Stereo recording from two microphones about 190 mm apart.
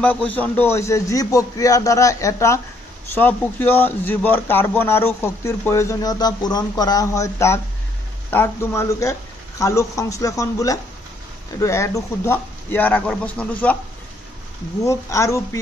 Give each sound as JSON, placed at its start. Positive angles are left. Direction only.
{"t": 0.0, "sound": "a man's voice", "side_deg": 10}
{"t": 14.8, "sound": "a man's voice", "side_deg": 15}